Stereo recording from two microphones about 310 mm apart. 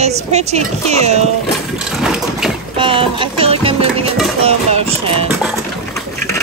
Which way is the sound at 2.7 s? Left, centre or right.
Centre.